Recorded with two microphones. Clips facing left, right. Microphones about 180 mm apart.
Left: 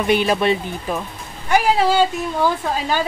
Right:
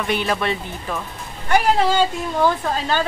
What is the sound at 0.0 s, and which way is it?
Speech, 20° left (ahead or behind).